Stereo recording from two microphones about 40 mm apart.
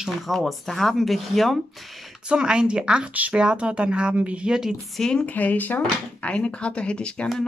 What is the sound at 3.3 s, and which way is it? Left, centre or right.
Speech, right.